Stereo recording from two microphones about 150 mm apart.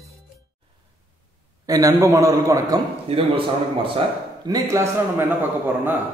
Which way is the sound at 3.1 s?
40° right (ahead or behind).